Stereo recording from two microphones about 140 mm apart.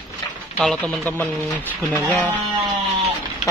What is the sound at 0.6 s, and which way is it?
Speech, 5° left (ahead or behind).